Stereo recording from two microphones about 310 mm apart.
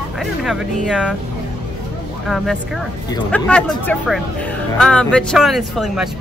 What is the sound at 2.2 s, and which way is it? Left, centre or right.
Speech, centre.